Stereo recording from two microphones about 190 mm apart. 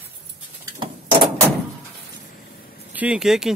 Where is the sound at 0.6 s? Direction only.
25° right (ahead or behind).